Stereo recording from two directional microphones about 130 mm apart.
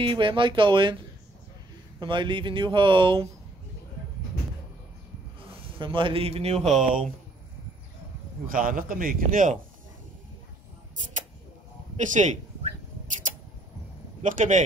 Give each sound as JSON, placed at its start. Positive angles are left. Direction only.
{"t": 0.0, "sound": "speech", "side_deg": -40}
{"t": 2.0, "sound": "speech", "side_deg": -40}
{"t": 5.4, "sound": "a man's voice", "side_deg": -45}
{"t": 6.7, "sound": "speech", "side_deg": -5}
{"t": 8.5, "sound": "a man's voice", "side_deg": -90}
{"t": 12.0, "sound": "a sound", "side_deg": -70}